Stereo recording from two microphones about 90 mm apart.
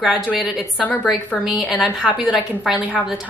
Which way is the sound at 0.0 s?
5° right (ahead or behind).